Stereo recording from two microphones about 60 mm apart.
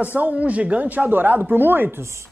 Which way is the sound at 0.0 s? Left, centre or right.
Right.